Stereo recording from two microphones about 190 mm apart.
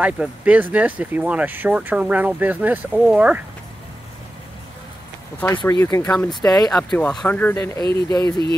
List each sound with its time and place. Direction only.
0.0 s speech: 5° right (ahead or behind)
5.7 s speech: 15° left (ahead or behind)
6.7 s speech: 5° left (ahead or behind)